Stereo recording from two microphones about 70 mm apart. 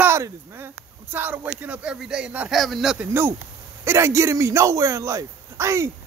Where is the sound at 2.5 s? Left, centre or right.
Centre.